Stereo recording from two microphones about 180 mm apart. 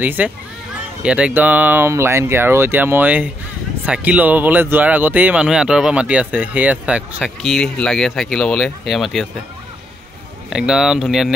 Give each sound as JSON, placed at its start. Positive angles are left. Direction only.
{"t": 0.0, "sound": "speech", "side_deg": -10}
{"t": 10.5, "sound": "speech", "side_deg": -5}